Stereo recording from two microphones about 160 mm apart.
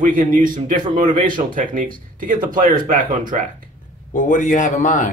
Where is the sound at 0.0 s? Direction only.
55° right (ahead or behind).